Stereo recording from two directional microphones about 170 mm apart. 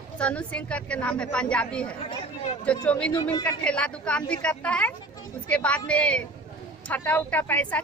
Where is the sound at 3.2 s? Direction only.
20° left (ahead or behind).